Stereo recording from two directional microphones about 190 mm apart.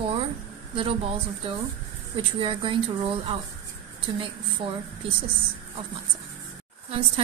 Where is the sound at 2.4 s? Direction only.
25° right (ahead or behind).